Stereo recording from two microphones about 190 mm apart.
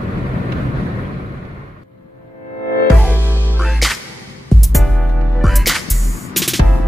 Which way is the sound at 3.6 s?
Centre (ahead or behind).